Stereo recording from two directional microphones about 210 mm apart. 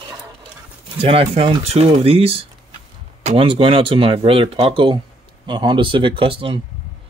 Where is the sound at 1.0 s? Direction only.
25° right (ahead or behind).